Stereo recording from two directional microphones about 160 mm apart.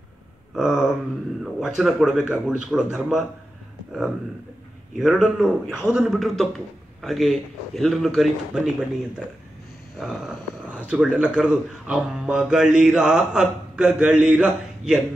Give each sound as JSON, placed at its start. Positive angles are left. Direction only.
{"t": 0.6, "sound": "speech", "side_deg": 0}
{"t": 4.9, "sound": "speech", "side_deg": 0}
{"t": 9.9, "sound": "speech", "side_deg": 0}